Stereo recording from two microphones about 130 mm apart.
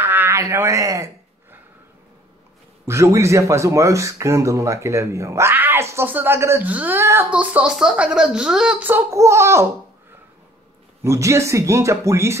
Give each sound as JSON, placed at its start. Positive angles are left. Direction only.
{"t": 0.0, "sound": "a sound", "side_deg": -15}
{"t": 2.9, "sound": "speech", "side_deg": -20}
{"t": 11.1, "sound": "speech", "side_deg": -25}